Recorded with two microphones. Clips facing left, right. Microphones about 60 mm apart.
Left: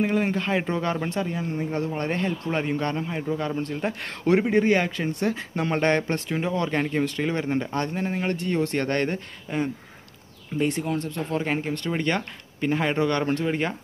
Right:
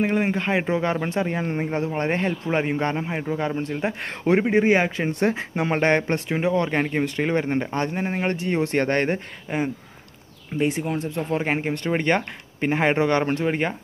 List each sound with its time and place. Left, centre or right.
0.1 s speech: centre
1.2 s speech: right
1.7 s speech: right
5.0 s speech: right
5.6 s speech: centre
12.5 s speech: right
12.9 s speech: right